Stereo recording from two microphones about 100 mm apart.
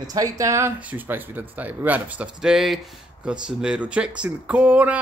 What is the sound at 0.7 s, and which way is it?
Speech, 15° right (ahead or behind).